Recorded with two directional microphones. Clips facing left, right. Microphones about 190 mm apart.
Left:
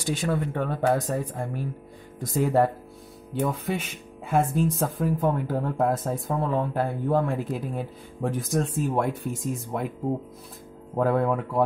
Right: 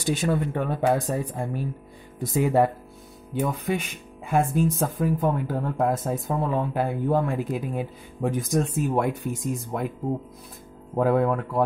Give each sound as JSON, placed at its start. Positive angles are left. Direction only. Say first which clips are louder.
{"t": 0.1, "sound": "speech", "louder": "right 2 dB", "side_deg": -20}
{"t": 0.5, "sound": "speech", "louder": "right 1 dB", "side_deg": -5}
{"t": 11.0, "sound": "speech", "louder": "right 2 dB", "side_deg": 0}